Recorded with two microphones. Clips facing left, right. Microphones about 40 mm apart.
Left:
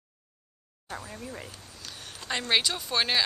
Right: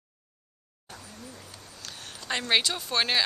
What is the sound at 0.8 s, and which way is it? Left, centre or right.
Speech, left.